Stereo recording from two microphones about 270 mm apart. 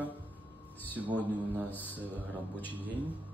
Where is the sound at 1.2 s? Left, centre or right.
Centre.